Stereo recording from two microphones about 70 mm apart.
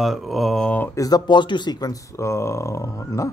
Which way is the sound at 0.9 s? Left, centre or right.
Left.